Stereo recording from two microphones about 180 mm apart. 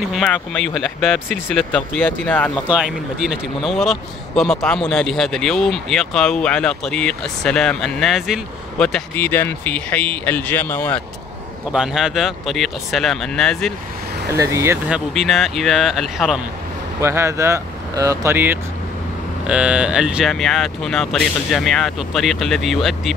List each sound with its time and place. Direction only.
0.1 s speech: centre (ahead or behind)
2.7 s speech: 5° right (ahead or behind)
11.7 s speech: 5° right (ahead or behind)
14.3 s speech: 15° right (ahead or behind)
14.9 s speech: centre (ahead or behind)
17.0 s speech: 15° right (ahead or behind)